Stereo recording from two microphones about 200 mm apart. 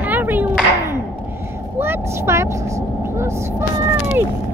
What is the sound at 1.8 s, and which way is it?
Vehicle, 10° right (ahead or behind).